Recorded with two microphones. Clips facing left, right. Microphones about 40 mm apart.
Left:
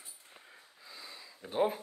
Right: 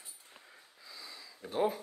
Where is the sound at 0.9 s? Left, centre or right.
Left.